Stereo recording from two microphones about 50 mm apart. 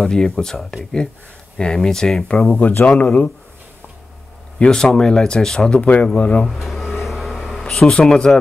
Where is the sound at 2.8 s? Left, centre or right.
Left.